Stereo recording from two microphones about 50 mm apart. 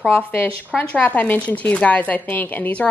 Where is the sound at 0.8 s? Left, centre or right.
Left.